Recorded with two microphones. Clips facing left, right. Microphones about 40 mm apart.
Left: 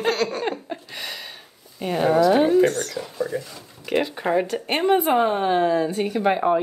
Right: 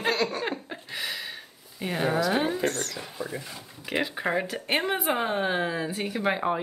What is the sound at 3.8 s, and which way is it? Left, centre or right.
A woman's voice, centre.